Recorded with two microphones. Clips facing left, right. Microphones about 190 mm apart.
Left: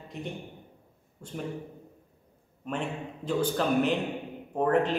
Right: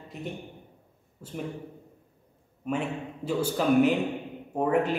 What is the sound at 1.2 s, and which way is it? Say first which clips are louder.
Speech: right 1 dB; 5° right (ahead or behind).